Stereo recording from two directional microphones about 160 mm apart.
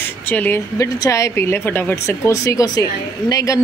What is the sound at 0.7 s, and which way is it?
A woman's voice, 20° left (ahead or behind).